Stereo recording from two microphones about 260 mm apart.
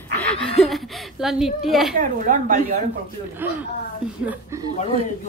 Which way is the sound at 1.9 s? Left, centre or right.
Right.